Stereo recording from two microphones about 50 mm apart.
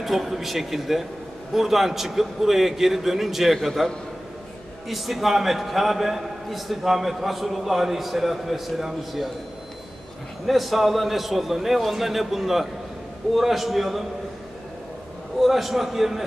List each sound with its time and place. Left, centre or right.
0.0 s a man's voice: centre
10.4 s a man's voice: centre
15.3 s a man's voice: centre